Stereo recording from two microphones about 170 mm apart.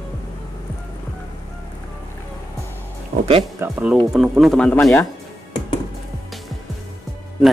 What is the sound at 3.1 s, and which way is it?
Music, 65° right (ahead or behind).